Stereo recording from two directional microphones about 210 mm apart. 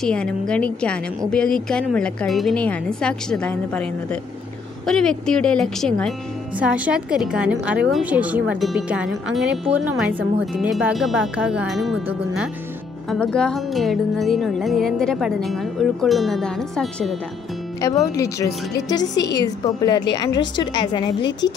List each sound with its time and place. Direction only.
0.0 s speech: 5° left (ahead or behind)
17.8 s a woman's voice: 15° left (ahead or behind)